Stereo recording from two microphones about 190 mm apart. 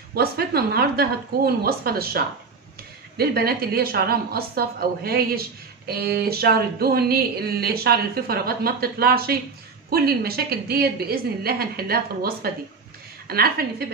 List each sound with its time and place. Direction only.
0.1 s speech: 55° right (ahead or behind)